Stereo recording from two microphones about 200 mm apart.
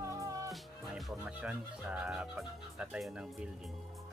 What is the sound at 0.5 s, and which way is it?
Speech, centre (ahead or behind).